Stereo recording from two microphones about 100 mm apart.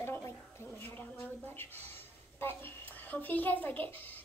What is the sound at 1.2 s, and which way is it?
A woman's voice, 20° left (ahead or behind).